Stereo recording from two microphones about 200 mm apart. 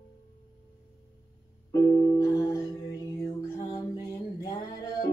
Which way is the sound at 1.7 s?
15° left (ahead or behind).